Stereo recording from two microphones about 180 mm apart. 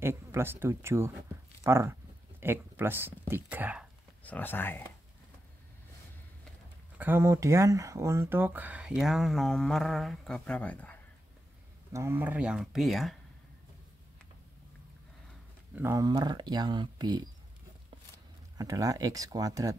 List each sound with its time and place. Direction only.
0.0 s speech: 15° right (ahead or behind)
4.2 s speech: 10° left (ahead or behind)
7.0 s speech: 10° right (ahead or behind); by 11.0 s 5° left (ahead or behind)
11.9 s speech: 15° right (ahead or behind); by 13.2 s centre (ahead or behind)
15.7 s speech: 15° right (ahead or behind)
18.6 s speech: 20° right (ahead or behind)